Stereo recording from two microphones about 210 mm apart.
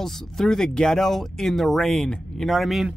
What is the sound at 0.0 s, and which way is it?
Speech, centre (ahead or behind).